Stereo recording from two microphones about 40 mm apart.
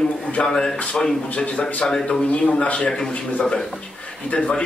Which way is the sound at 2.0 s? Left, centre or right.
Left.